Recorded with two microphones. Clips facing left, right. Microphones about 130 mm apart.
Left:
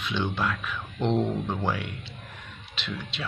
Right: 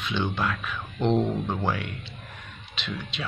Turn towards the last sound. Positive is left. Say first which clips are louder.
# right 1 dB
turn(degrees=0)  # may be behind; listen again after turning